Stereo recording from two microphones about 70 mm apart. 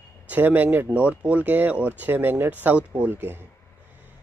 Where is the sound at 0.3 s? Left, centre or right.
Right.